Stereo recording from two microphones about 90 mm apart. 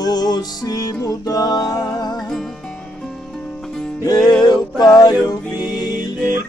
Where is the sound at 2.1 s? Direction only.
5° left (ahead or behind).